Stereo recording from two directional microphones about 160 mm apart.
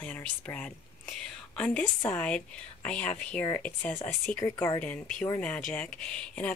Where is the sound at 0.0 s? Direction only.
10° left (ahead or behind).